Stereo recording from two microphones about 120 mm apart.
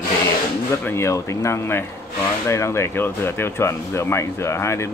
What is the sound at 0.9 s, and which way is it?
Speech, 25° left (ahead or behind).